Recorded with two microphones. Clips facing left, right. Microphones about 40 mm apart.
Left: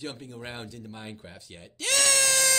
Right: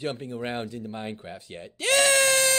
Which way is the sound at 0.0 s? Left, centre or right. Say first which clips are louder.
Right 7 dB; right.